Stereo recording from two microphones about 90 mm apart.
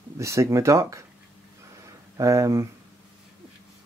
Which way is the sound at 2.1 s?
35° right (ahead or behind).